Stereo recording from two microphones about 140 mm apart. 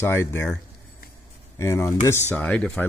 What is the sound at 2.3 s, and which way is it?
Speech, 10° left (ahead or behind).